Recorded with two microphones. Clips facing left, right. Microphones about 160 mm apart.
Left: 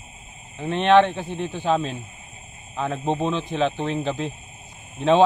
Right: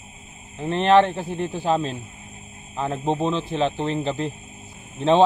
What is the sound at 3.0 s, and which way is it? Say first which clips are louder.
A man's voice: right 1 dB; centre (ahead or behind).